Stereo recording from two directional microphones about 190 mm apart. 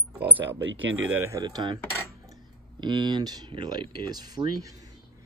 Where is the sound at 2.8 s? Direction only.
25° right (ahead or behind).